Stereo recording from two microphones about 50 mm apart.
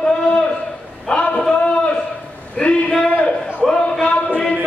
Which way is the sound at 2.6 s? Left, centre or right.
Left.